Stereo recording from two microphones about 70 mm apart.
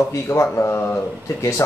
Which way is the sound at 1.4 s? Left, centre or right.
Left.